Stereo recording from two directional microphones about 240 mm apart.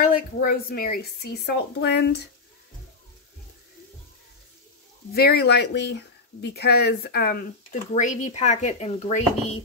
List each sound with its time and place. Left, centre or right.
0.0 s speech: left
5.1 s speech: left